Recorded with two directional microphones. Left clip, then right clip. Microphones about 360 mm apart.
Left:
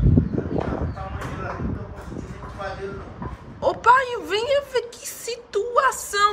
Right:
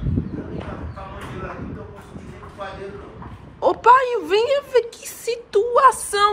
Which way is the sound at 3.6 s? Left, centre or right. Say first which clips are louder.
Right 3 dB; centre.